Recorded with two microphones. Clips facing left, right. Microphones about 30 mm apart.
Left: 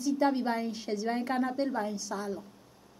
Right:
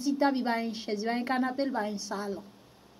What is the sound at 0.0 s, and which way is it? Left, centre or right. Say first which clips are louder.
A woman's voice: right 1 dB; right.